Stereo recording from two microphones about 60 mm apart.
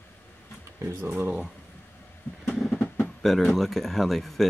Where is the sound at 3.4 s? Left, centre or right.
Centre.